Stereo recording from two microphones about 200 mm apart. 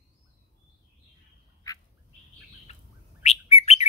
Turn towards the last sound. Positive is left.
turn(degrees=30)  # may be behind; listen again after turning